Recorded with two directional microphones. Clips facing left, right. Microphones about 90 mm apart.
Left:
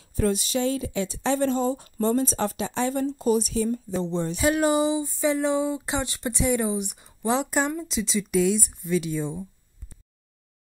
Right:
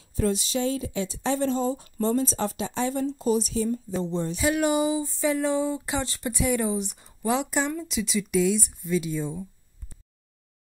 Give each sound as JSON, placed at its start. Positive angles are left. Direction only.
{"t": 0.1, "sound": "speech", "side_deg": 60}
{"t": 4.5, "sound": "a sound", "side_deg": 35}
{"t": 5.0, "sound": "speech", "side_deg": 20}
{"t": 7.2, "sound": "a sound", "side_deg": 35}
{"t": 7.9, "sound": "speech", "side_deg": 30}
{"t": 8.3, "sound": "speech", "side_deg": 50}